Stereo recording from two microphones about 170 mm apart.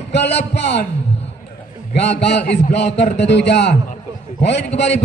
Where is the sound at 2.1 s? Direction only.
85° left.